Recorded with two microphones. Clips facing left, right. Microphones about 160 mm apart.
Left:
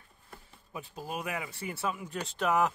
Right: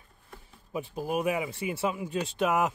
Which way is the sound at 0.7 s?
15° right (ahead or behind).